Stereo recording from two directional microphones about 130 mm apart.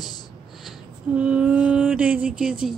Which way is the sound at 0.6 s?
10° right (ahead or behind).